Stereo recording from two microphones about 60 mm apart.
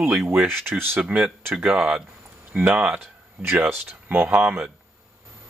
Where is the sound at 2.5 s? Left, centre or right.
Right.